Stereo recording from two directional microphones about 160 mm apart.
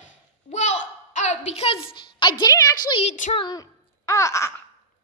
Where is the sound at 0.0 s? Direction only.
45° left (ahead or behind).